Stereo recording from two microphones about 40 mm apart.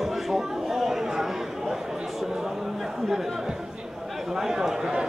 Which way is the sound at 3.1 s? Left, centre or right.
Centre.